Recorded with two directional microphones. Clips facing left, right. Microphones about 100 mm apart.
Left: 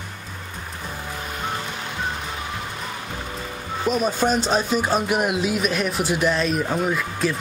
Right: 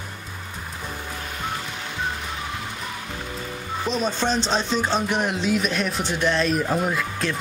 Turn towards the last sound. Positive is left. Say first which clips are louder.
# left 2 dB
turn(degrees=0)  # may be behind; listen again after turning